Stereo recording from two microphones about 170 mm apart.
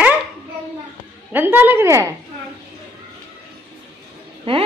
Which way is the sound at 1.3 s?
10° right (ahead or behind).